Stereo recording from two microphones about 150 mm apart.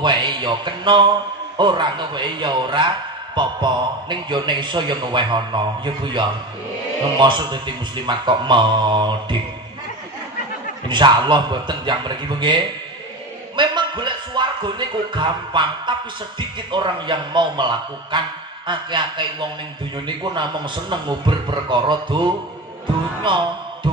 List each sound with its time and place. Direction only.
0.0 s a man's voice: 30° right (ahead or behind)
10.9 s a man's voice: 30° right (ahead or behind)
20.3 s a man's voice: 30° right (ahead or behind)